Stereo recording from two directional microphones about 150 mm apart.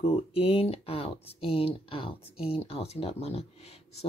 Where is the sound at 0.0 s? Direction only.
40° left (ahead or behind).